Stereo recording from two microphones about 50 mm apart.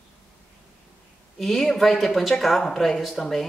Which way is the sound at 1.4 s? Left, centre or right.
Centre.